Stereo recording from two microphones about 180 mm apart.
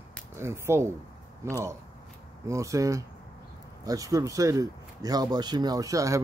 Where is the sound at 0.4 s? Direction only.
15° right (ahead or behind).